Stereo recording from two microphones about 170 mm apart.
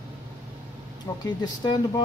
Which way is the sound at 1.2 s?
25° left (ahead or behind).